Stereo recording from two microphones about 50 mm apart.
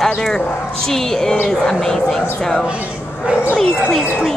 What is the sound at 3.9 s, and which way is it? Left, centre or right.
Speech, centre.